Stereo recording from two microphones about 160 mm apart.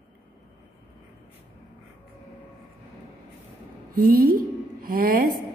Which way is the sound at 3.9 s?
65° right (ahead or behind).